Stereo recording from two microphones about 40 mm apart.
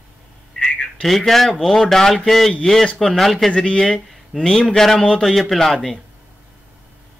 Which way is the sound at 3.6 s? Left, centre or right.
Left.